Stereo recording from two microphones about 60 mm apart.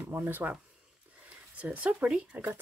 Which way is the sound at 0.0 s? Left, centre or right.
Right.